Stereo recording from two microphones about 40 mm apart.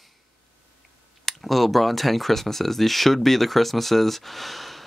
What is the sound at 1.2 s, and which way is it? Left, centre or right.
Speech, centre.